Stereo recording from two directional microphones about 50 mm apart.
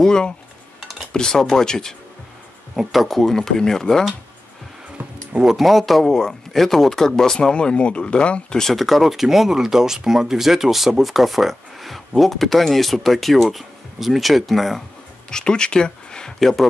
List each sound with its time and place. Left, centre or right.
0.0 s speech: centre
2.7 s speech: centre
5.4 s speech: centre
7.5 s speech: left; by 14.8 s centre
15.2 s speech: centre
16.3 s speech: centre